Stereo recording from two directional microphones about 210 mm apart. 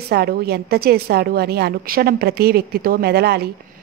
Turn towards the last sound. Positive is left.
turn(degrees=-50)  # may be behind; listen again after turning